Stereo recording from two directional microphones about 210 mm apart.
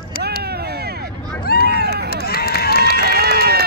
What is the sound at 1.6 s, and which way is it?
Run, 50° right (ahead or behind).